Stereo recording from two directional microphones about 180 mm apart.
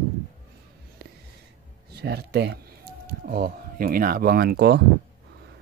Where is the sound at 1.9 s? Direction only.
65° right (ahead or behind).